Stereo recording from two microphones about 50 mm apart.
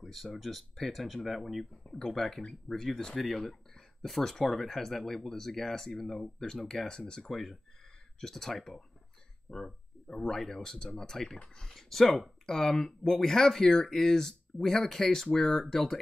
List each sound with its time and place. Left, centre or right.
0.0 s speech: centre
1.7 s speech: centre
7.2 s speech: centre
9.5 s speech: centre